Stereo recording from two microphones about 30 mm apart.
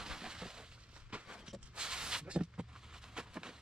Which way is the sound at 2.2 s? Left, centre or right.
Right.